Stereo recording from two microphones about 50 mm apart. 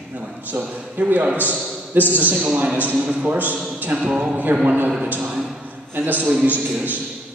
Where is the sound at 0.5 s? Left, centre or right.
Right.